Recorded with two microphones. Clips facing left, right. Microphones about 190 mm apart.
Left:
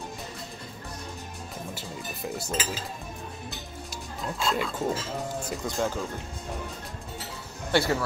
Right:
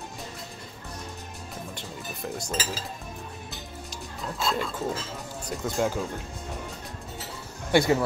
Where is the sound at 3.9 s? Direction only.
10° left (ahead or behind).